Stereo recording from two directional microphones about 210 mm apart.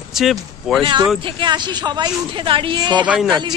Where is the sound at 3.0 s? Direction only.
5° right (ahead or behind).